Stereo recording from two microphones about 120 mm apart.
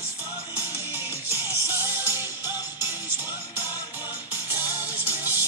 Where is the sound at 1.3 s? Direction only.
20° right (ahead or behind).